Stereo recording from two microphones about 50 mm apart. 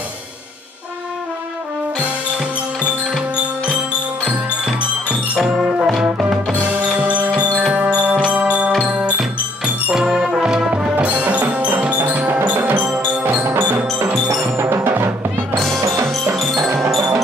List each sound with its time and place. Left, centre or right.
2.0 s music: centre
5.6 s music: right
7.0 s music: right
10.1 s music: centre; by 12.4 s right
12.5 s music: right
15.5 s music: centre